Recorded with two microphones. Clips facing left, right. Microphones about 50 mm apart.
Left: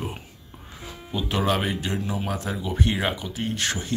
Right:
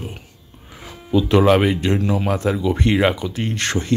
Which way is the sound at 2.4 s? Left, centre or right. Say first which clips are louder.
Right 8 dB; right.